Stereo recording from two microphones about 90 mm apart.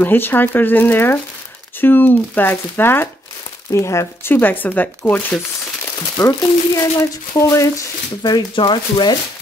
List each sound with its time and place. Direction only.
0.0 s speech: 20° left (ahead or behind)
6.1 s speech: 40° left (ahead or behind)
8.2 s speech: 50° left (ahead or behind)
8.5 s speech: 65° left (ahead or behind)